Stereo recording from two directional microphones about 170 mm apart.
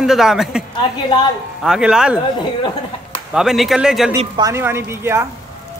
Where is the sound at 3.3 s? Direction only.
5° right (ahead or behind).